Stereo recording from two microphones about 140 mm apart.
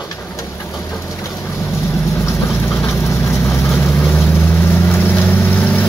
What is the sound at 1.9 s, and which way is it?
Vehicle, 20° left (ahead or behind).